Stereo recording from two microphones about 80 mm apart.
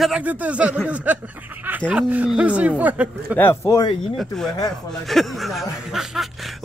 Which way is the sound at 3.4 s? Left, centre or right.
Left.